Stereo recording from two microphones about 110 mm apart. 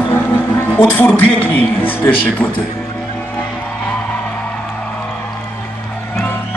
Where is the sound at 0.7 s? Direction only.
15° left (ahead or behind).